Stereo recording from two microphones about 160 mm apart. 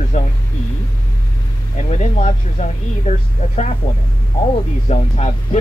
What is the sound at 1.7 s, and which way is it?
Speech, 45° left (ahead or behind).